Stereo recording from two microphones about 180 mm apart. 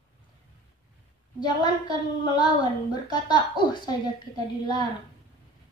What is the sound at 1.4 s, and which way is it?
A woman's voice, 25° left (ahead or behind).